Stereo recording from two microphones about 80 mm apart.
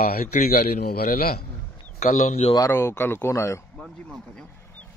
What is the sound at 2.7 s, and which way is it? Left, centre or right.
Speech, left.